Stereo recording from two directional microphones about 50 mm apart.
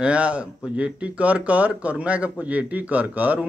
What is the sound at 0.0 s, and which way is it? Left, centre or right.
Speech, right.